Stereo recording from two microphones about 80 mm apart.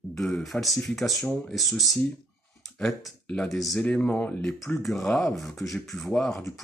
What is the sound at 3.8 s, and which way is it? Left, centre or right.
Speech, centre.